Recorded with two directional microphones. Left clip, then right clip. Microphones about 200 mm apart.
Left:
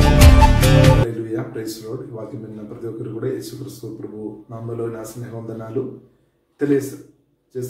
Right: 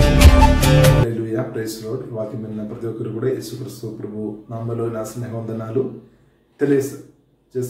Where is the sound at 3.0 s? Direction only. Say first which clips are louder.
Right 3 dB; centre (ahead or behind).